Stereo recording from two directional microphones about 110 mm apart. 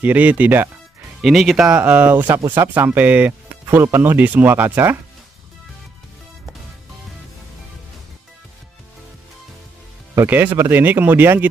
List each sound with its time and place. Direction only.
0.0 s speech: 15° right (ahead or behind)
1.2 s speech: centre (ahead or behind); by 4.9 s 15° right (ahead or behind)
10.1 s speech: 20° right (ahead or behind)